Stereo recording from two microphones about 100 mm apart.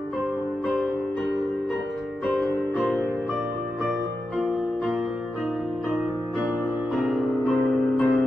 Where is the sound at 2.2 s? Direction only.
Centre (ahead or behind).